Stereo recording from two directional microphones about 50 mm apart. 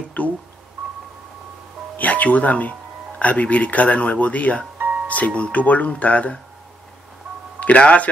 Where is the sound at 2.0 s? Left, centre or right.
Left.